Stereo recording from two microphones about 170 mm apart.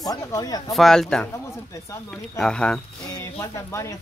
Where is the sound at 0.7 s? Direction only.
Centre (ahead or behind).